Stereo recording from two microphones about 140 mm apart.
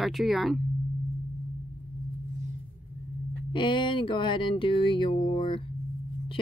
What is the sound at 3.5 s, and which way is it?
Speech, 35° left (ahead or behind).